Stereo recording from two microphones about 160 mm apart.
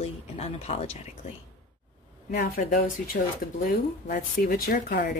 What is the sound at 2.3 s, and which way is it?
Speech, 65° left (ahead or behind).